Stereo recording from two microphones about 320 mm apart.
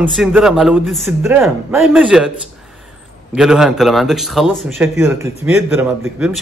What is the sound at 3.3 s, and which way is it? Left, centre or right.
A man's voice, centre.